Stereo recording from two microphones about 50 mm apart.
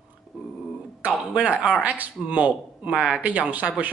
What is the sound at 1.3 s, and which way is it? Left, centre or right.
Speech, right.